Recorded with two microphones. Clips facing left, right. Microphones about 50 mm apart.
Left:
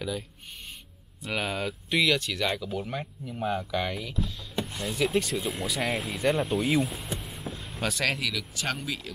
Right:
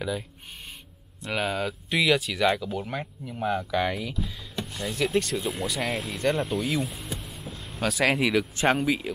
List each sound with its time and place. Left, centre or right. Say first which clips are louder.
1.2 s speech: right 2 dB; centre
6.8 s vehicle: left 2 dB; centre
8.2 s speech: right 9 dB; right